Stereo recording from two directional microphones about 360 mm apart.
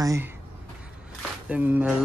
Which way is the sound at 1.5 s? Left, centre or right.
Centre.